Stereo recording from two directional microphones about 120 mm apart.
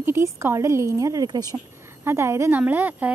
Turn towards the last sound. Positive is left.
turn(degrees=-15)  # may be behind; listen again after turning